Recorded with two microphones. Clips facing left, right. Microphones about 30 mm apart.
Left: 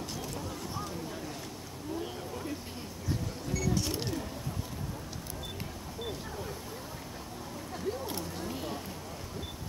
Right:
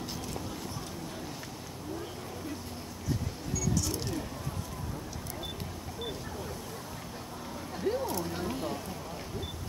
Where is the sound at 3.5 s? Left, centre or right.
Left.